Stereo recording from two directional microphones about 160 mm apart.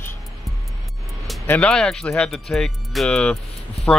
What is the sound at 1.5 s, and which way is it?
Speech, 5° left (ahead or behind).